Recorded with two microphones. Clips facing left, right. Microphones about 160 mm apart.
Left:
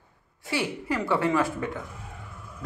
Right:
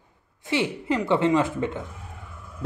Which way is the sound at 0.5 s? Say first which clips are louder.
Right 4 dB; 20° right (ahead or behind).